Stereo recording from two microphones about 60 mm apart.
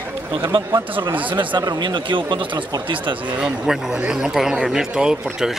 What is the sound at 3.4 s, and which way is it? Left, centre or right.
Speech, centre.